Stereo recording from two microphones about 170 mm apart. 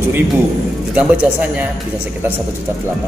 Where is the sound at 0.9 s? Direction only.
10° right (ahead or behind).